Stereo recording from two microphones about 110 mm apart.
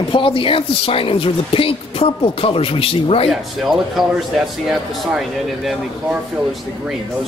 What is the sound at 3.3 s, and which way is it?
Speech, centre (ahead or behind).